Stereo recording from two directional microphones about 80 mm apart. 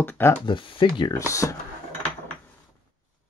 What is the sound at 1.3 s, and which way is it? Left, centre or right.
Speech, left.